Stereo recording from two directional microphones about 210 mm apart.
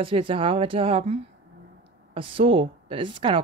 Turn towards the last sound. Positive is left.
turn(degrees=-25)  # may be behind; listen again after turning